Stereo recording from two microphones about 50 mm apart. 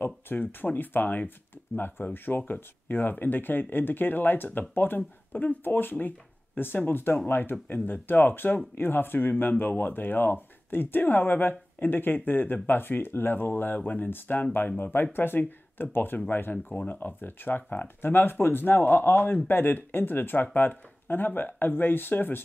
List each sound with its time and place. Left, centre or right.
0.0 s speech: left
16.6 s speech: left